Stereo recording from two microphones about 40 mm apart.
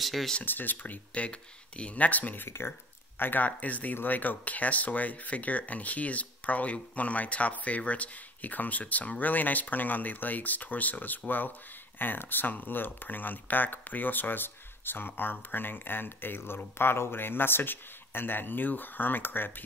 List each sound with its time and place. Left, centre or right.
0.0 s speech: centre
0.5 s speech: left
1.1 s speech: left
2.0 s speech: left
2.4 s speech: left
3.2 s speech: left
3.4 s speech: left